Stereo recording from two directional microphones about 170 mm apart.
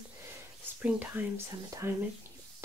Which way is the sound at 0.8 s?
10° right (ahead or behind).